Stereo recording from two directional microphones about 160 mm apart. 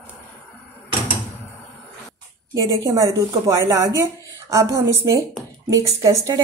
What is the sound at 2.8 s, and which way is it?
Speech, 20° right (ahead or behind).